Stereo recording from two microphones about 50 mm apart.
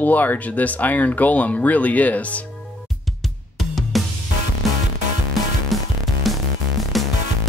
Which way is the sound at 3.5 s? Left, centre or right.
Centre.